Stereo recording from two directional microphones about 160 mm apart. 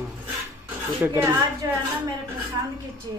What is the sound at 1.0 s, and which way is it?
Speech, 15° right (ahead or behind).